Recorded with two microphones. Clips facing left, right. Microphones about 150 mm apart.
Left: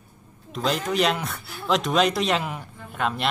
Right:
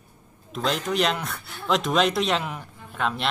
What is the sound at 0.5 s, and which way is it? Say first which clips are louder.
Speech: left 1 dB; centre (ahead or behind).